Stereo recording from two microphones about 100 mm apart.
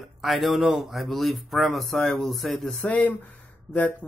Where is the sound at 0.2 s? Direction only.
Centre (ahead or behind).